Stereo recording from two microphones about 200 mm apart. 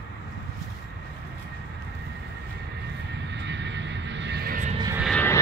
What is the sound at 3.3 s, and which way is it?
Vehicle, 60° right (ahead or behind).